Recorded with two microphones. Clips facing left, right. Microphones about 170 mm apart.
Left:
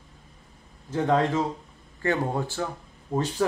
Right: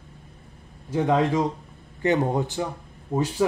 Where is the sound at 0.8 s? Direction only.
10° right (ahead or behind).